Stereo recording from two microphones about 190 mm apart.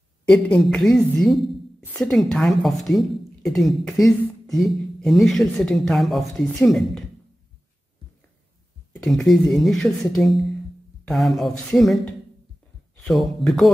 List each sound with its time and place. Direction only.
0.2 s speech: 5° left (ahead or behind)
8.9 s speech: centre (ahead or behind)